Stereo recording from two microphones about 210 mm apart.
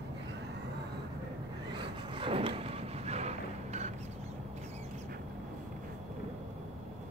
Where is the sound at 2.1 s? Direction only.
25° right (ahead or behind).